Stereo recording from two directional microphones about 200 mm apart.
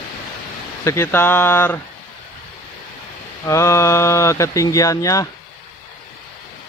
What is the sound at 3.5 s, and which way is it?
Speech, 15° left (ahead or behind).